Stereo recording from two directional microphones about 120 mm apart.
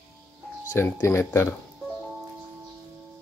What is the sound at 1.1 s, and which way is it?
Speech, 20° left (ahead or behind).